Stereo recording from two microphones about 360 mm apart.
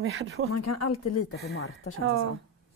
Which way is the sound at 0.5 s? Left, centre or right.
Left.